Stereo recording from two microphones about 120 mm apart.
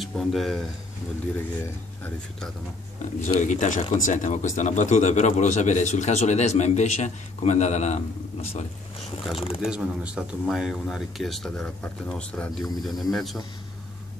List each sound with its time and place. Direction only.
0.0 s speech: centre (ahead or behind)
1.3 s speech: 20° left (ahead or behind)
3.3 s speech: 90° left; by 8.6 s 70° left (ahead or behind)
9.3 s speech: 50° left (ahead or behind)
9.6 s speech: 5° right (ahead or behind)